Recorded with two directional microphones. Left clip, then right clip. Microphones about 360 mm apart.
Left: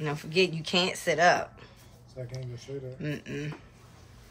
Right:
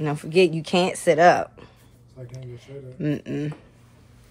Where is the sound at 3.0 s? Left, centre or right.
Centre.